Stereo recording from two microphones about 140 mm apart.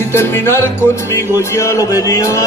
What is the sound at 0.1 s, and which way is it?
Music, 15° left (ahead or behind).